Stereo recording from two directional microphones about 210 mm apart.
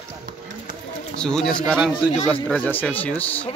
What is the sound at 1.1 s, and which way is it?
Speech, 5° left (ahead or behind).